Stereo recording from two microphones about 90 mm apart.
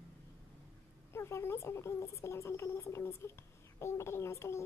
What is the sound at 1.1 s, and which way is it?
Speech, 30° left (ahead or behind).